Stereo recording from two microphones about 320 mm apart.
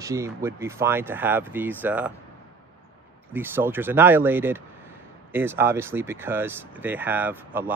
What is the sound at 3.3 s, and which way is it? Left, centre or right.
Speech, centre.